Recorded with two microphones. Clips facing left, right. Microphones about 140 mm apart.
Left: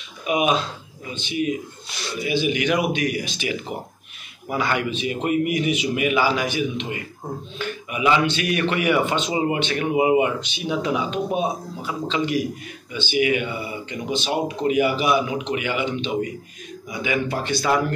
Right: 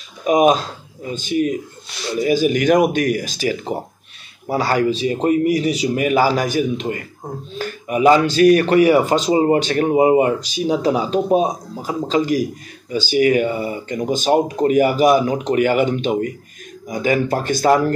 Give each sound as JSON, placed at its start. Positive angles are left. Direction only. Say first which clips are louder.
{"t": 0.2, "sound": "speech", "louder": "right 7 dB", "side_deg": -40}